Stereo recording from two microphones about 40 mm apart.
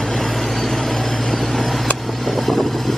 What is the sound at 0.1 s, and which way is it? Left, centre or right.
Vehicle, centre.